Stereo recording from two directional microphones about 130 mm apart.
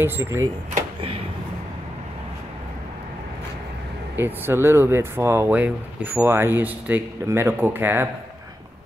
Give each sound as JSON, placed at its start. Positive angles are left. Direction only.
{"t": 0.0, "sound": "speech", "side_deg": -20}
{"t": 4.2, "sound": "speech", "side_deg": -15}